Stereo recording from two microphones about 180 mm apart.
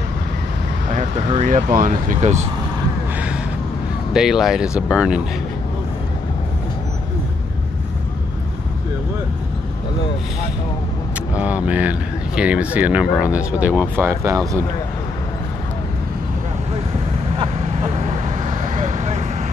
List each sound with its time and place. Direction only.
0.9 s speech: 40° right (ahead or behind)
4.1 s speech: 5° right (ahead or behind)
11.3 s speech: 5° right (ahead or behind)
13.3 s speech: 15° left (ahead or behind)
13.6 s speech: 10° right (ahead or behind)
18.7 s vehicle: 40° right (ahead or behind)